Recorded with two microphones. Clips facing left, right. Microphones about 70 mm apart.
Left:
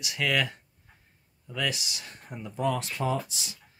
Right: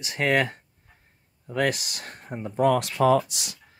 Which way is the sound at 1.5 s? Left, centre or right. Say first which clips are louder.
Right 7 dB; right.